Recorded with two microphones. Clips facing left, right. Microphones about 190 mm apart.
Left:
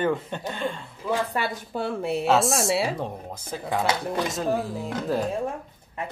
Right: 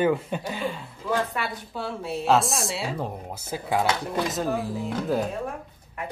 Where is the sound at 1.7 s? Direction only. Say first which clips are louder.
Left 4 dB; 55° left (ahead or behind).